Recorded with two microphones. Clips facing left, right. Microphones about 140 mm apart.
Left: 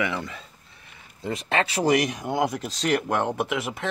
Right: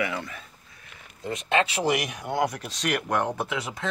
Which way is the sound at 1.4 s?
35° left (ahead or behind).